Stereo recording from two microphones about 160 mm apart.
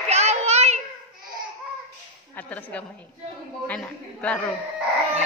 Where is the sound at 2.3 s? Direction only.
10° left (ahead or behind).